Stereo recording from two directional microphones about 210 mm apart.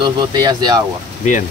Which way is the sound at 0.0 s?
20° right (ahead or behind).